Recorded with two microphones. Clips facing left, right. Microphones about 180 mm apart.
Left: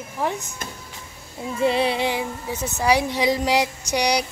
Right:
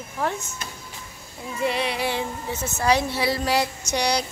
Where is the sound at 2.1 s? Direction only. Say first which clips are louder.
Left 1 dB; 10° left (ahead or behind).